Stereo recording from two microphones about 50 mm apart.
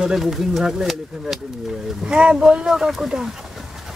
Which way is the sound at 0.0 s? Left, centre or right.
Centre.